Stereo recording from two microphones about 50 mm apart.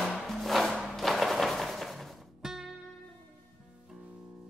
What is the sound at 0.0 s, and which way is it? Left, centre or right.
Music, centre.